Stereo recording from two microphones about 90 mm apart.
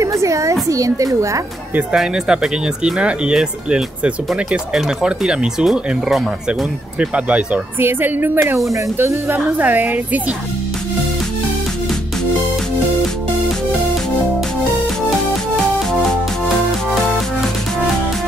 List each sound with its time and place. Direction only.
0.0 s a woman's voice: 35° right (ahead or behind)
2.0 s speech: 5° right (ahead or behind)
7.0 s speech: 15° right (ahead or behind)